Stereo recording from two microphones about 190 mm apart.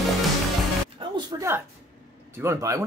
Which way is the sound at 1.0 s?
25° right (ahead or behind).